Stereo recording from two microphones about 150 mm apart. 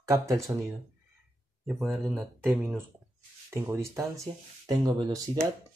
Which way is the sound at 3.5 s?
20° right (ahead or behind).